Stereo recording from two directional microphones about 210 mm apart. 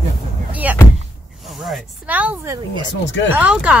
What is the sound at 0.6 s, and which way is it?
A woman's voice, 5° right (ahead or behind).